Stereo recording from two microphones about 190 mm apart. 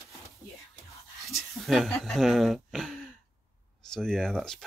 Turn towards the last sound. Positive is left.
turn(degrees=5)  # may be behind; listen again after turning